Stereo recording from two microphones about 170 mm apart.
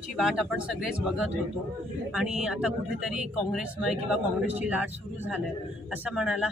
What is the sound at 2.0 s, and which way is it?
Speech, 5° right (ahead or behind).